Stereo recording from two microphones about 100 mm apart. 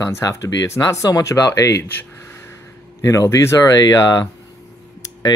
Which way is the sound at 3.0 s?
30° left (ahead or behind).